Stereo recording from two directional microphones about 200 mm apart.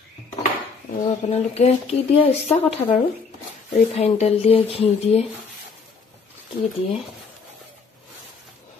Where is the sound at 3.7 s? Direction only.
35° left (ahead or behind).